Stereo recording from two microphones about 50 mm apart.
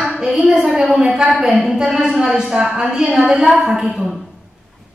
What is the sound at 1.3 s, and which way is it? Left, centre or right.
A woman's voice, centre.